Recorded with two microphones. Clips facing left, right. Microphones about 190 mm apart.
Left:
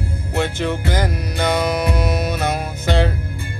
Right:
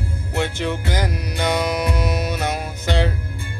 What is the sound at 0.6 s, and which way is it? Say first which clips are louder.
Music: left 2 dB; 15° right (ahead or behind).